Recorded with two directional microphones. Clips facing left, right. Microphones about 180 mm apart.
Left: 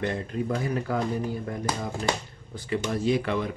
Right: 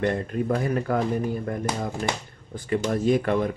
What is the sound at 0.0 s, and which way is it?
Speech, 55° right (ahead or behind).